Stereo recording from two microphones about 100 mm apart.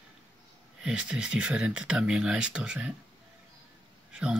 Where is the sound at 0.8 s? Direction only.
10° right (ahead or behind).